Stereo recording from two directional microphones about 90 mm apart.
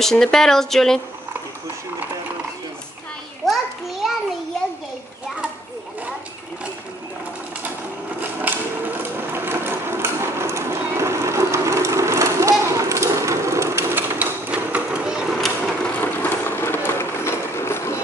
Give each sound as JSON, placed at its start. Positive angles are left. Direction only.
{"t": 0.0, "sound": "speech", "side_deg": 5}
{"t": 3.4, "sound": "children playing", "side_deg": 0}
{"t": 8.2, "sound": "sewing machine", "side_deg": -20}
{"t": 15.4, "sound": "mechanisms", "side_deg": 10}
{"t": 16.0, "sound": "a sound", "side_deg": 25}